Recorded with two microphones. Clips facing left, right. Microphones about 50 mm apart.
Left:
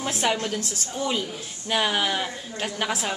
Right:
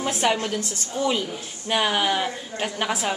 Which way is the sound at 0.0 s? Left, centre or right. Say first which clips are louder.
Right 2 dB; centre.